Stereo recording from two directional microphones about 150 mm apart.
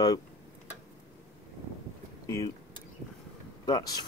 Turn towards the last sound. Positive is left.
turn(degrees=25)  # may be behind; listen again after turning